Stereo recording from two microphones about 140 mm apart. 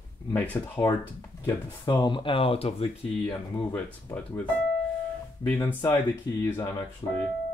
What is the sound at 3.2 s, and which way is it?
Speech, 5° left (ahead or behind).